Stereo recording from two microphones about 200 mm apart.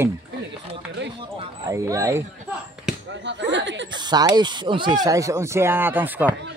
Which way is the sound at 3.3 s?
65° right (ahead or behind).